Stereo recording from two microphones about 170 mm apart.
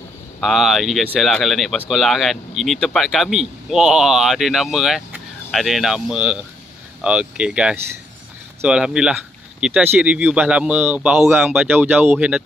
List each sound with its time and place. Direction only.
0.4 s speech: centre (ahead or behind)